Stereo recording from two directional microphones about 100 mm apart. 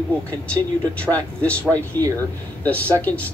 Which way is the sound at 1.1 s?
10° right (ahead or behind).